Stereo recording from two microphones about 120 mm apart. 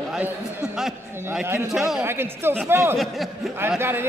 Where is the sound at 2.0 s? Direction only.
20° right (ahead or behind).